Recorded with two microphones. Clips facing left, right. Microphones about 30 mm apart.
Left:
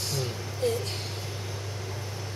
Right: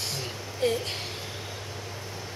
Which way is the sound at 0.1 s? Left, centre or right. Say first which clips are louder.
Left 2 dB; right.